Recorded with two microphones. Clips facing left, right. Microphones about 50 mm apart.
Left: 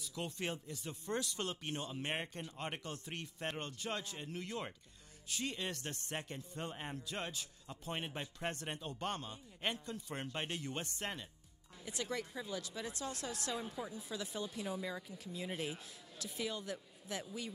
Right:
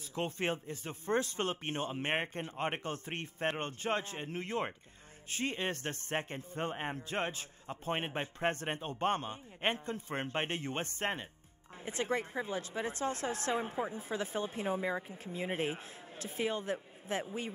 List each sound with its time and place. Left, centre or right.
0.0 s speech: right